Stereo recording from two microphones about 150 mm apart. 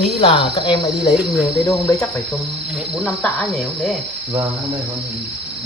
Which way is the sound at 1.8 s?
20° left (ahead or behind).